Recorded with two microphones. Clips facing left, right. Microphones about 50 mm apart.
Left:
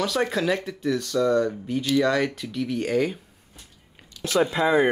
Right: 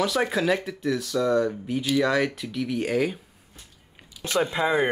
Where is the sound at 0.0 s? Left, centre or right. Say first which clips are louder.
Even; centre.